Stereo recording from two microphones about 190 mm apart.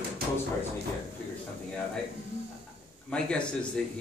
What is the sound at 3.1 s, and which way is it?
Speech, 5° left (ahead or behind).